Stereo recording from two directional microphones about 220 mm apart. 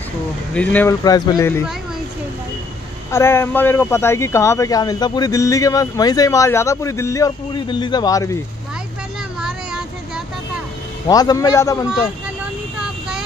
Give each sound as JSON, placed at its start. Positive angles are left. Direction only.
{"t": 0.6, "sound": "speech", "side_deg": 5}
{"t": 3.1, "sound": "speech", "side_deg": 10}
{"t": 9.4, "sound": "a sound", "side_deg": -5}
{"t": 11.1, "sound": "speech", "side_deg": 15}